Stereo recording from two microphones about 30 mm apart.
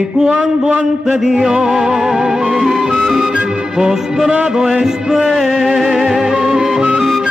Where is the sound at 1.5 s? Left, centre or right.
Right.